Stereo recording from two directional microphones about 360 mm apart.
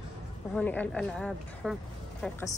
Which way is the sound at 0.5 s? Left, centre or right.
Centre.